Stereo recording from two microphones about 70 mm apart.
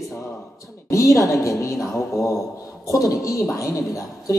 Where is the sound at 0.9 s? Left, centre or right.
Left.